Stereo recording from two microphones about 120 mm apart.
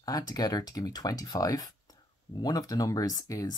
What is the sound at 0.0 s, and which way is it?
Speech, 30° left (ahead or behind).